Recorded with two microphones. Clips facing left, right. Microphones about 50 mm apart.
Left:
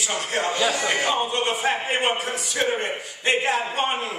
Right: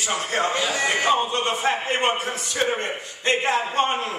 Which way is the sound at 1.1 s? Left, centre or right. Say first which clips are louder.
Right 1 dB; centre.